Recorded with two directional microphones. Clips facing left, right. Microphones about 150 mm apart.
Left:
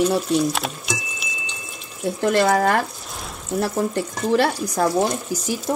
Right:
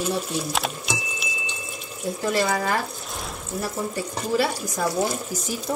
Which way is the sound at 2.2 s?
60° left (ahead or behind).